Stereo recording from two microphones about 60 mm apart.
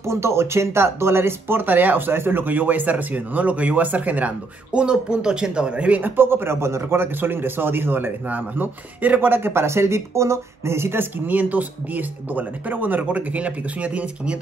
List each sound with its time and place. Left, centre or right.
0.0 s speech: right
4.7 s speech: centre